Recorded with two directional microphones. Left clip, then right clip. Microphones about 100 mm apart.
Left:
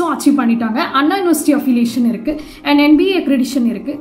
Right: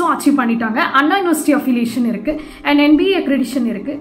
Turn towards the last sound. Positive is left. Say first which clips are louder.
# left 2 dB
turn(degrees=35)  # may be behind; listen again after turning